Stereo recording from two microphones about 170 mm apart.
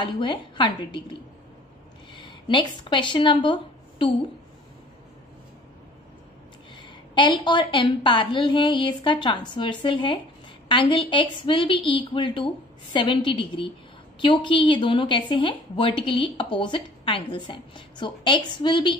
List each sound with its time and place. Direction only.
0.0 s a woman's voice: 25° left (ahead or behind)
2.1 s speech: 30° left (ahead or behind)
6.7 s a woman's voice: 30° left (ahead or behind)